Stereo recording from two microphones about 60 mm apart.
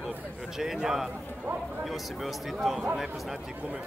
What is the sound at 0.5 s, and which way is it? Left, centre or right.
Speech, centre.